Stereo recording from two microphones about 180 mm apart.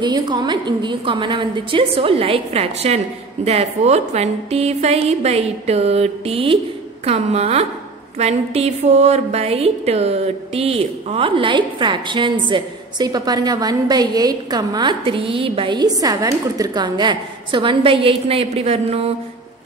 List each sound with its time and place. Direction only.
0.0 s a woman's voice: 25° right (ahead or behind)